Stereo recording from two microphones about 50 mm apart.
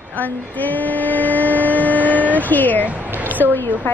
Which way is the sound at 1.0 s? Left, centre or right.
Left.